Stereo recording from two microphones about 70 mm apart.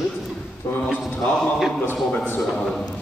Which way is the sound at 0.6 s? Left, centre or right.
Left.